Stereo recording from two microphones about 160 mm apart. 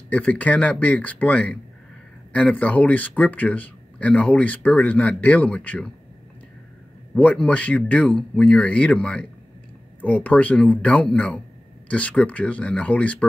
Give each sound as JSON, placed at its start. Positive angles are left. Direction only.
{"t": 0.1, "sound": "speech", "side_deg": 10}
{"t": 7.2, "sound": "speech", "side_deg": 10}